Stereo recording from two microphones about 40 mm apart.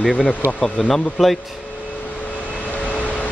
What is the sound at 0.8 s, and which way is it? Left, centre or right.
Speech, centre.